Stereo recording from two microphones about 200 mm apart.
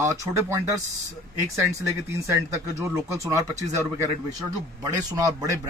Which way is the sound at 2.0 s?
15° right (ahead or behind).